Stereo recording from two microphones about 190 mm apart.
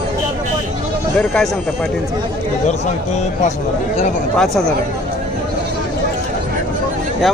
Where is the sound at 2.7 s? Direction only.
40° left (ahead or behind).